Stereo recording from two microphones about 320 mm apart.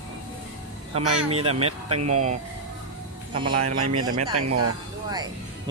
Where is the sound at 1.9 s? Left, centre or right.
Right.